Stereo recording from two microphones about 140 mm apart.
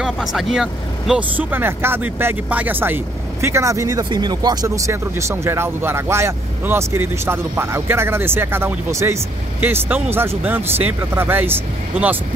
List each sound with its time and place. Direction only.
0.0 s speech: centre (ahead or behind)